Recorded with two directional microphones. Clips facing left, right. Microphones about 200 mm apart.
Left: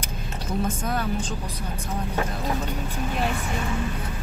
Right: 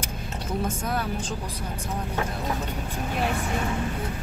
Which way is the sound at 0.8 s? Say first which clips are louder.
Left 2 dB; 5° right (ahead or behind).